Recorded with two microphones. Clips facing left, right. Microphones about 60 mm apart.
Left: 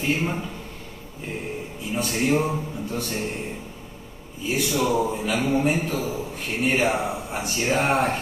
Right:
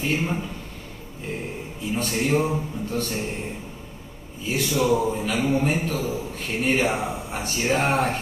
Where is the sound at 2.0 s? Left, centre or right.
Centre.